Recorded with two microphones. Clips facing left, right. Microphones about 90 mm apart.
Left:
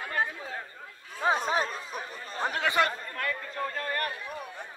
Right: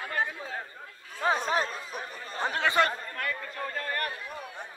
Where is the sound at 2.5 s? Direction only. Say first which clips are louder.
Right 1 dB; 35° right (ahead or behind).